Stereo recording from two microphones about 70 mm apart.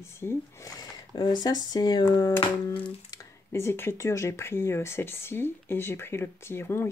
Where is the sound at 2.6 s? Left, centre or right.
Left.